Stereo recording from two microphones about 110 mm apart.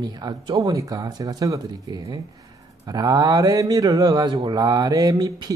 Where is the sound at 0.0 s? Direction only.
40° right (ahead or behind).